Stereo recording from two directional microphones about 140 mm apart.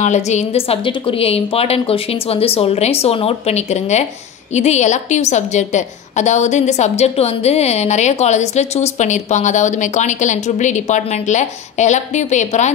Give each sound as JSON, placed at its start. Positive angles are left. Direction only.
{"t": 0.0, "sound": "a woman's voice", "side_deg": 55}